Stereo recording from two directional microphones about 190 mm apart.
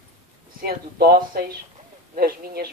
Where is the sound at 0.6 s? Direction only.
55° right (ahead or behind).